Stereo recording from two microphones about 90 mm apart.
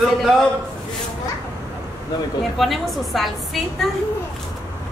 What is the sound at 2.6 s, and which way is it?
A woman's voice, centre (ahead or behind).